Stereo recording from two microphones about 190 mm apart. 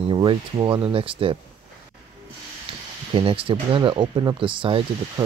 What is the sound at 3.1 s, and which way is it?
Speech, 30° right (ahead or behind).